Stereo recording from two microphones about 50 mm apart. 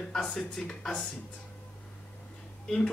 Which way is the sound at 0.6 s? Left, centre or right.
Centre.